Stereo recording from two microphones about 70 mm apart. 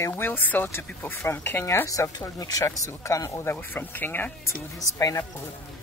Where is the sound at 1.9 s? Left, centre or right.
Left.